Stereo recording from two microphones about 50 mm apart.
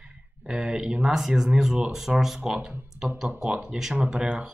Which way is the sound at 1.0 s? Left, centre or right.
Centre.